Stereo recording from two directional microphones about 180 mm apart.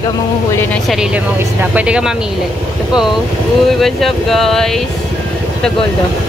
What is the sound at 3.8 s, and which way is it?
Speech, centre (ahead or behind).